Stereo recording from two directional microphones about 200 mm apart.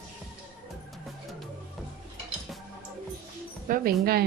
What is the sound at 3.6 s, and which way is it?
Speech, 45° right (ahead or behind).